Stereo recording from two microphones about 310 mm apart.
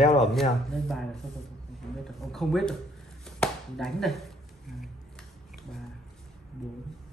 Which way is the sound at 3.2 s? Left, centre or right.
Centre.